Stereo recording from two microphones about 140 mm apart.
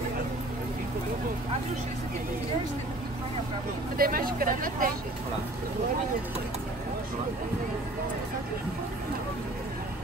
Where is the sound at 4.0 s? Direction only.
90° right.